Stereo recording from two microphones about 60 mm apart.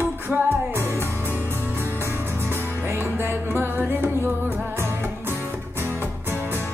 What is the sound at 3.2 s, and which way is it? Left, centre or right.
Music, right.